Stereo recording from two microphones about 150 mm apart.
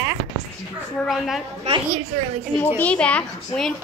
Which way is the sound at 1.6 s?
45° right (ahead or behind).